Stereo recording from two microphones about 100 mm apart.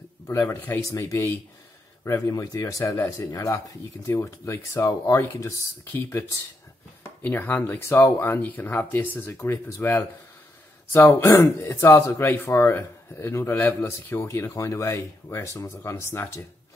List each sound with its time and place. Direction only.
0.3 s speech: 30° left (ahead or behind)